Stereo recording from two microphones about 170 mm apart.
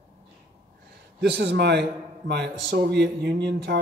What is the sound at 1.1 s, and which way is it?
A man's voice, 85° right.